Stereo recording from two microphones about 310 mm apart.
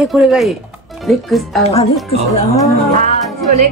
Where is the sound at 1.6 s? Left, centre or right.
Centre.